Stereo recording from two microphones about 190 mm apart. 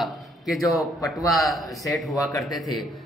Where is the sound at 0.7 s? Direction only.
15° left (ahead or behind).